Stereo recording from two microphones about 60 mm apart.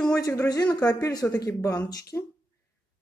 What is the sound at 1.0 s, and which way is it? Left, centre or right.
Speech, left.